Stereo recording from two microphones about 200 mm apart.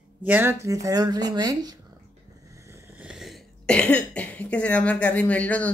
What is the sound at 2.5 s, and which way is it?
Cough, 15° right (ahead or behind).